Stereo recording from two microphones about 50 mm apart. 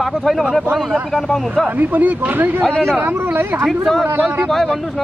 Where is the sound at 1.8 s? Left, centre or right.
Right.